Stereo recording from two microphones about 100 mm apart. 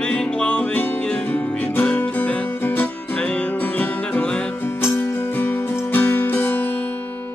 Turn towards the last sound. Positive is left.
turn(degrees=20)  # may be behind; listen again after turning